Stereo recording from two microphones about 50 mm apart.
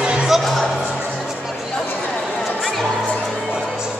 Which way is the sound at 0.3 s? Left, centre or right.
Centre.